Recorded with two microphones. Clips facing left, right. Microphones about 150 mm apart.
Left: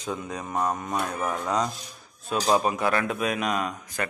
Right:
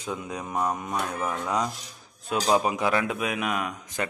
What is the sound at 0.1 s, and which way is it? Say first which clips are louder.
Speech: left 1 dB; 10° right (ahead or behind).